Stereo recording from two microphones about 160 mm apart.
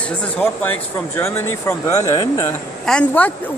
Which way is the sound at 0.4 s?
15° left (ahead or behind).